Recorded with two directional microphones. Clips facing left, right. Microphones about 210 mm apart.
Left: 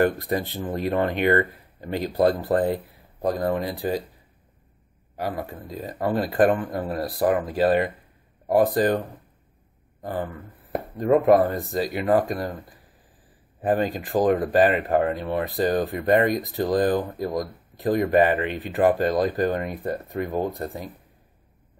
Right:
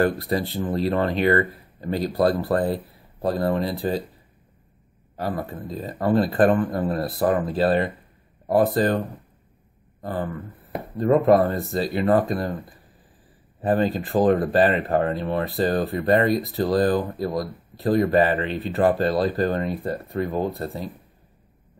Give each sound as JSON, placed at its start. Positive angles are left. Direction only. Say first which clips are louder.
{"t": 0.0, "sound": "speech", "louder": "even", "side_deg": 15}
{"t": 5.1, "sound": "speech", "louder": "right 1 dB", "side_deg": 15}
{"t": 10.0, "sound": "speech", "louder": "right 1 dB", "side_deg": 15}
{"t": 13.6, "sound": "speech", "louder": "right 2 dB", "side_deg": 15}